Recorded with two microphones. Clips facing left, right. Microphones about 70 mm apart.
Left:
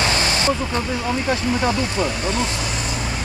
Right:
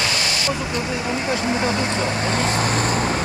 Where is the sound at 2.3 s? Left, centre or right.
Right.